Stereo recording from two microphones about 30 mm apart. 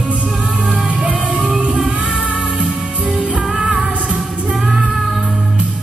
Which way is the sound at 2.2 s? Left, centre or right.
Right.